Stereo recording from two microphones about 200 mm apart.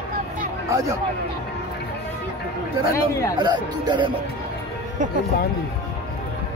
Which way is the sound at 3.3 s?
20° right (ahead or behind).